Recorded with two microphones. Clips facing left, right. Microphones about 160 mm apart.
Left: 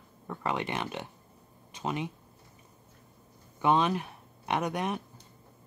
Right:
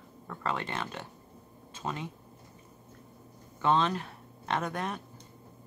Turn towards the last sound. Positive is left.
turn(degrees=15)  # may be behind; listen again after turning